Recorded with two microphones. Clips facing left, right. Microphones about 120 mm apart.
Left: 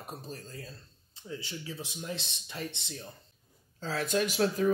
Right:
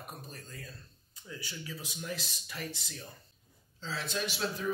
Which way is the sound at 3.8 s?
50° left (ahead or behind).